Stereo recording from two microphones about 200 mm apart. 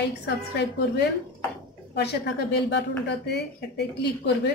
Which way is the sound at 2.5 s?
60° left (ahead or behind).